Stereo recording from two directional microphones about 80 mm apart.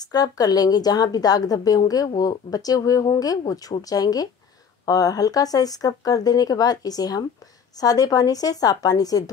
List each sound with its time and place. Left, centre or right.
0.0 s a woman's voice: left